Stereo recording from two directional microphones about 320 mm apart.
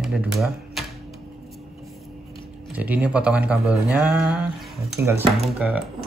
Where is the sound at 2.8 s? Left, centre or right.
Centre.